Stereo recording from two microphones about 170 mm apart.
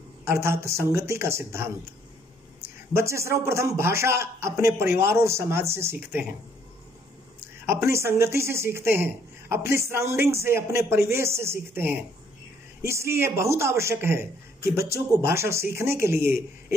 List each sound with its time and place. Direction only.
0.2 s a man's voice: 15° right (ahead or behind)
2.9 s a man's voice: 15° right (ahead or behind)
7.6 s a man's voice: 15° right (ahead or behind)